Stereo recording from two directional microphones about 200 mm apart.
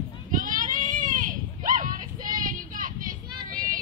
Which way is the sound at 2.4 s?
40° right (ahead or behind).